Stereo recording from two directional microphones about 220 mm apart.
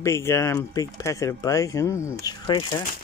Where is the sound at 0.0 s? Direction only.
10° left (ahead or behind).